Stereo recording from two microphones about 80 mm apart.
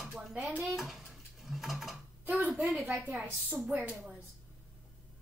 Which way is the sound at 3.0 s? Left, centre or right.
Centre.